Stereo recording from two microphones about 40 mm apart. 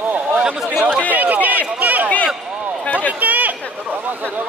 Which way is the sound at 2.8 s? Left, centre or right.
Left.